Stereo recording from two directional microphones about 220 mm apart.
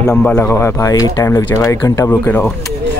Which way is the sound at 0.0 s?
5° left (ahead or behind).